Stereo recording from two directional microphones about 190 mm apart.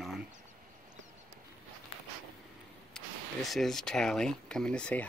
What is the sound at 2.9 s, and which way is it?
Speech, centre (ahead or behind).